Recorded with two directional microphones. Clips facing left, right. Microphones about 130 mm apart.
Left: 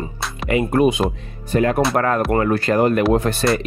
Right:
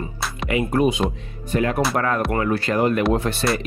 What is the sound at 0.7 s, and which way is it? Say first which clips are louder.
Speech: left 3 dB; 60° left (ahead or behind).